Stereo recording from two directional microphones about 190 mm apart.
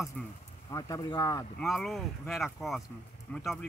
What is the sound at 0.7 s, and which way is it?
Speech, 20° left (ahead or behind).